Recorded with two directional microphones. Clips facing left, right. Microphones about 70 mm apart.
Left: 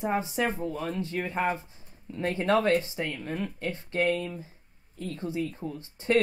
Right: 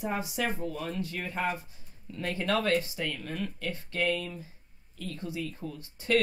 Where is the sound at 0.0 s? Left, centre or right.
Left.